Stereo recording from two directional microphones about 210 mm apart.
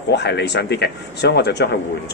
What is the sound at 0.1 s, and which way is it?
Speech, 55° left (ahead or behind).